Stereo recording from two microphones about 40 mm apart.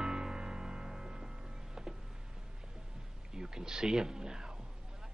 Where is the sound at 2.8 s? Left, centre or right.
Centre.